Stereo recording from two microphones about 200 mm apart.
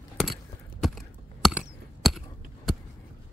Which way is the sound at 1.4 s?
Centre (ahead or behind).